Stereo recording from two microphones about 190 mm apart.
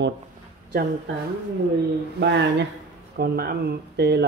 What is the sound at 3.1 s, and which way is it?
Speech, 55° right (ahead or behind).